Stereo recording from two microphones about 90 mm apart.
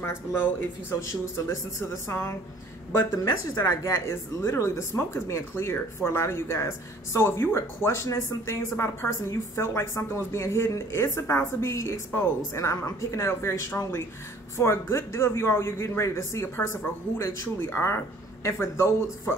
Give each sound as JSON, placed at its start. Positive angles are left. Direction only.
{"t": 0.0, "sound": "speech", "side_deg": 25}
{"t": 3.4, "sound": "speech", "side_deg": 40}